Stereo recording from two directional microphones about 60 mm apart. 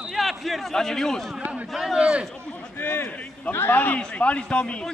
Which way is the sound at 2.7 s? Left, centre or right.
Left.